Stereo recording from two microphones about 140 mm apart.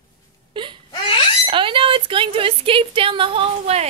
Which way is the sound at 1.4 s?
40° right (ahead or behind).